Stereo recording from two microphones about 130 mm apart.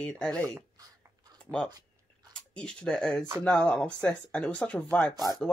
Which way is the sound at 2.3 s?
5° left (ahead or behind).